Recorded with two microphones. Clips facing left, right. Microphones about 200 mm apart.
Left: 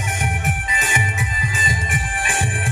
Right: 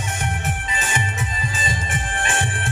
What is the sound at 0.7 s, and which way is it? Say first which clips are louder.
Music: left 1 dB; 15° left (ahead or behind).